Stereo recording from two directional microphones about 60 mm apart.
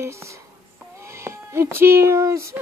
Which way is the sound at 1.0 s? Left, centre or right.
Right.